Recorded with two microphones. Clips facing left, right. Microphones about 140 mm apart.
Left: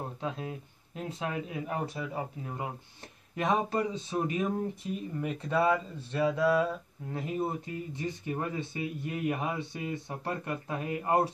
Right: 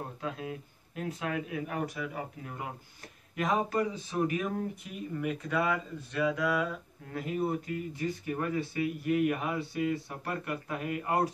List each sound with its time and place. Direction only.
0.2 s speech: 25° left (ahead or behind)